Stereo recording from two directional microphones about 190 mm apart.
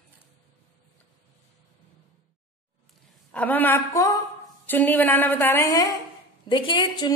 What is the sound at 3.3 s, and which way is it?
A woman's voice, 10° left (ahead or behind).